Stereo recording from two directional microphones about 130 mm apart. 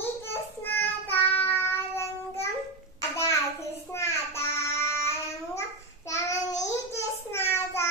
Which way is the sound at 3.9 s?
20° left (ahead or behind).